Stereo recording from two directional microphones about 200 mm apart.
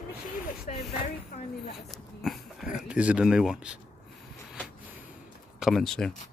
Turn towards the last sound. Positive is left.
turn(degrees=0)  # may be behind; listen again after turning